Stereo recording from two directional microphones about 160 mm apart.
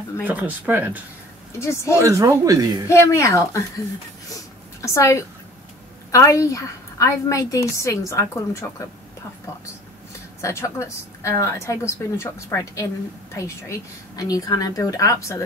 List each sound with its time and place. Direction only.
0.2 s speech: 10° right (ahead or behind)
1.6 s a woman's voice: 15° left (ahead or behind)
2.0 s speech: 20° right (ahead or behind)
2.9 s a woman's voice: 20° left (ahead or behind)
4.8 s a woman's voice: 20° left (ahead or behind)
10.4 s a woman's voice: 15° left (ahead or behind)